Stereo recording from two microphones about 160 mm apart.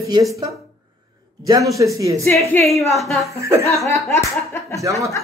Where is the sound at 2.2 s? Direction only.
15° left (ahead or behind).